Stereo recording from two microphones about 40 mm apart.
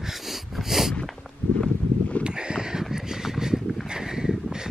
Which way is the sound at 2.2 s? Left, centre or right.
Right.